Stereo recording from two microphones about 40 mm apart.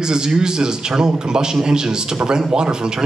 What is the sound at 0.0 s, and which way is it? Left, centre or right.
A man's voice, centre.